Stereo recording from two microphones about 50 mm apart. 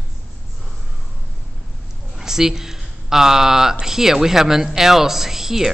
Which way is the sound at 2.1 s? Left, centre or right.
Centre.